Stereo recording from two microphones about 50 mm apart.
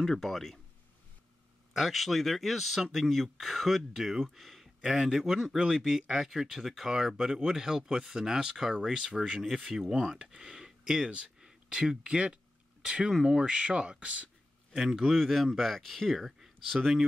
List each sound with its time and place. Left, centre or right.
0.0 s speech: centre
1.7 s speech: centre; by 14.3 s right
14.7 s speech: centre